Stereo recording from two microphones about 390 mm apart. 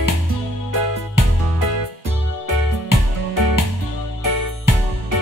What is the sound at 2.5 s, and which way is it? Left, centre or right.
Music, left.